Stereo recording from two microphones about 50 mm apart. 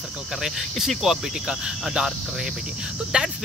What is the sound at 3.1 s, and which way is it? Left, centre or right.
Speech, centre.